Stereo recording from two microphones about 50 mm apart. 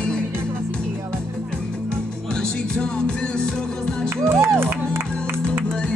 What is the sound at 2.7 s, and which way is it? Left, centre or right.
Music, centre.